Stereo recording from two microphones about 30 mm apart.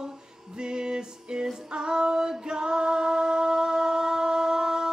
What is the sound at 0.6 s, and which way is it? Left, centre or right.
Music, right.